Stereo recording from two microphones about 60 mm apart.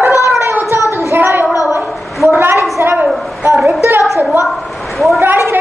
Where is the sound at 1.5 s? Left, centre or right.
Left.